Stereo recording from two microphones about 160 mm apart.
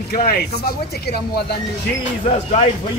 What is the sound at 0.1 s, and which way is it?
A man's voice, 75° left (ahead or behind).